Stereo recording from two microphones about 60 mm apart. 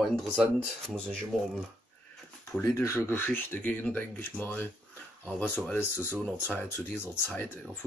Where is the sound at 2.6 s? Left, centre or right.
Left.